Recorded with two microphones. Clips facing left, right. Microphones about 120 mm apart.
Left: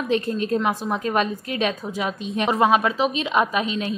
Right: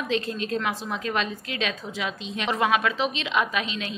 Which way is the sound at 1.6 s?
40° left (ahead or behind).